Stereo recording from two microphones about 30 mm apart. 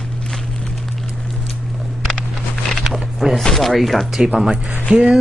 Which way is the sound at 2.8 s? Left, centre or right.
Centre.